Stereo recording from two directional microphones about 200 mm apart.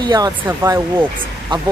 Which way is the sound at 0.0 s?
20° right (ahead or behind).